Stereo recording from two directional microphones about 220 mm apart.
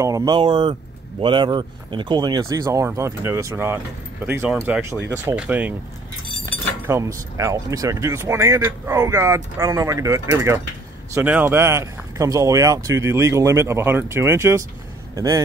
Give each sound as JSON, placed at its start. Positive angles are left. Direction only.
{"t": 0.0, "sound": "speech", "side_deg": -15}
{"t": 6.9, "sound": "speech", "side_deg": -15}